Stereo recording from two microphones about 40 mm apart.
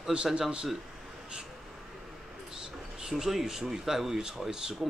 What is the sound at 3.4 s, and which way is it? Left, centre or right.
Speech, centre.